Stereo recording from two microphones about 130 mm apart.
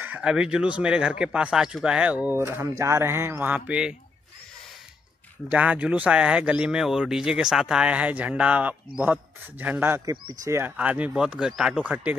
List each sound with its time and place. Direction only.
0.0 s speech: 10° right (ahead or behind)
5.5 s speech: 10° right (ahead or behind)